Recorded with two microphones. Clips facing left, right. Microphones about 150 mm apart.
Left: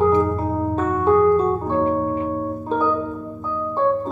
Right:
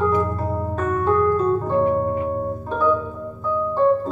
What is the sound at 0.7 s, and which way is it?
Keyboard, 20° left (ahead or behind).